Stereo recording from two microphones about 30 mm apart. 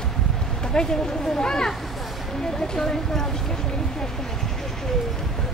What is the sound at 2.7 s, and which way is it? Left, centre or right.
Speech, centre.